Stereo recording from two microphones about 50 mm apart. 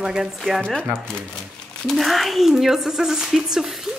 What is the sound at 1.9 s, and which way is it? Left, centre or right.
Speech, centre.